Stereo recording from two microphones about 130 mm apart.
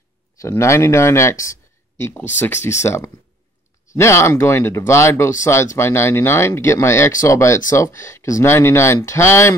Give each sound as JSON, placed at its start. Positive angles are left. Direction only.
{"t": 0.4, "sound": "speech", "side_deg": 20}